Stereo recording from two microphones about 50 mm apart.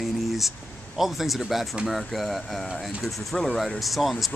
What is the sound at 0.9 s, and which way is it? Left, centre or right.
Speech, centre.